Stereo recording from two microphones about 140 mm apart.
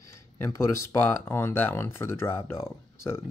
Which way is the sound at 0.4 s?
20° left (ahead or behind).